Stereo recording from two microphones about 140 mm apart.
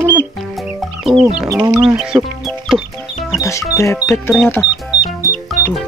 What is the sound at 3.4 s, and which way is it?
Music, 20° left (ahead or behind).